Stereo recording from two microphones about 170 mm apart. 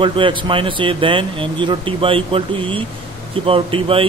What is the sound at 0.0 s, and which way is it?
A man's voice, 30° right (ahead or behind).